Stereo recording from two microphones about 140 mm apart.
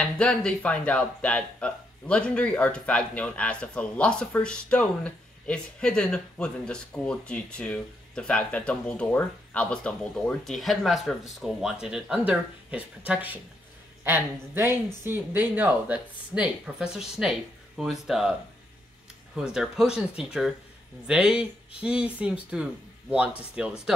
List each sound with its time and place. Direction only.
0.0 s speech: 5° left (ahead or behind)
19.3 s speech: 5° right (ahead or behind)